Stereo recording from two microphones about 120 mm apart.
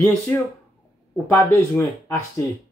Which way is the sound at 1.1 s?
25° left (ahead or behind).